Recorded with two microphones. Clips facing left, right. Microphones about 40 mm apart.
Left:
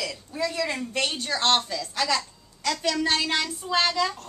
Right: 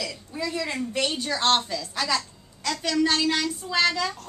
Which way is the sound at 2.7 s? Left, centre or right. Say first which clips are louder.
Left 2 dB; centre.